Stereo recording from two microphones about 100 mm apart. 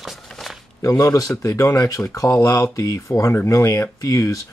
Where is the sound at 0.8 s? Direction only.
30° left (ahead or behind).